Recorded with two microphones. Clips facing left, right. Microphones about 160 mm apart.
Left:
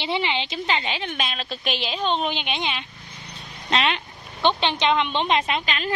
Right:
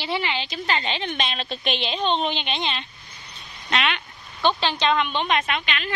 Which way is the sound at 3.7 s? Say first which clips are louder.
Left 2 dB; 30° left (ahead or behind).